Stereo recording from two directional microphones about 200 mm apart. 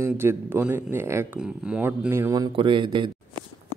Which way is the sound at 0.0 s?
10° right (ahead or behind).